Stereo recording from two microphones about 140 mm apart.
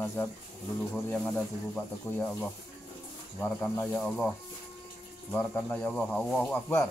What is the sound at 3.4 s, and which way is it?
Speech, 15° left (ahead or behind).